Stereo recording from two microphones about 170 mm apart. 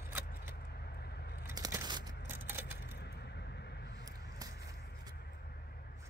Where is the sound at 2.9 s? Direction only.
75° left (ahead or behind).